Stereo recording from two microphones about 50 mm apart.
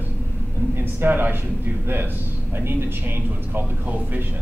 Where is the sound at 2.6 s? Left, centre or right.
Right.